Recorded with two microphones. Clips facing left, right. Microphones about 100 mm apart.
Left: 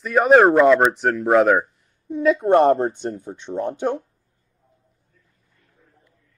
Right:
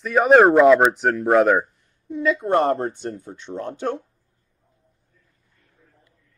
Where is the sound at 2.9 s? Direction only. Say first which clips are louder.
Left 3 dB; 20° left (ahead or behind).